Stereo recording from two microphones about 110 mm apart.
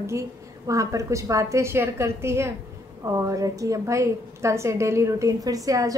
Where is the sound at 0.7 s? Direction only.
30° right (ahead or behind).